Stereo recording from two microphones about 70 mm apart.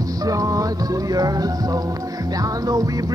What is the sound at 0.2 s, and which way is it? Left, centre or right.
Music, right.